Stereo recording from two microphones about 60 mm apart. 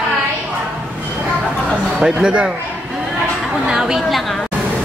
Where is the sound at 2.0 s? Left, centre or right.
Centre.